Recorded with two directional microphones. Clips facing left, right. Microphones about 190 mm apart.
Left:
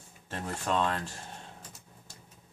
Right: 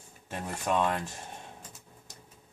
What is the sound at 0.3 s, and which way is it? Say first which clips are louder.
Speech: right 1 dB; 15° right (ahead or behind).